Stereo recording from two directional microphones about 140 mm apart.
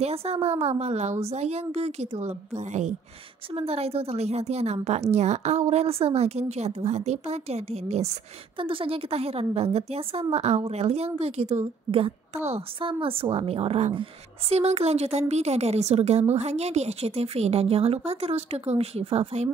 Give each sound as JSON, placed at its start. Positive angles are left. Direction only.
{"t": 0.0, "sound": "a woman's voice", "side_deg": -45}